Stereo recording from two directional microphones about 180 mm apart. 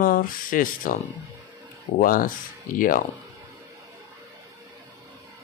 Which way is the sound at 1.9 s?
50° left (ahead or behind).